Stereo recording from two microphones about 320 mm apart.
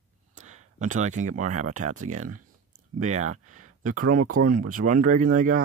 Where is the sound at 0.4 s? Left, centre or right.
Right.